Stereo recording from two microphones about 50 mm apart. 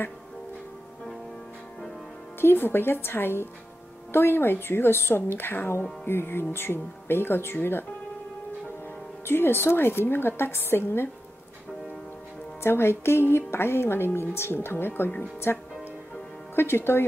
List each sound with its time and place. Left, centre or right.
2.4 s a woman's voice: left
9.2 s a woman's voice: left
12.6 s a woman's voice: left